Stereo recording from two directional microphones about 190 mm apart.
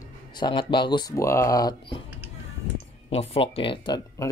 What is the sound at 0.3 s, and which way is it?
Speech, 25° left (ahead or behind).